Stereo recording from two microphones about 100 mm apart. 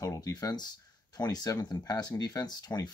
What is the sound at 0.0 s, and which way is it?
Speech, 40° left (ahead or behind).